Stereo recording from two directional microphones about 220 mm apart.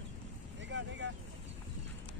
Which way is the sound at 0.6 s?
55° right (ahead or behind).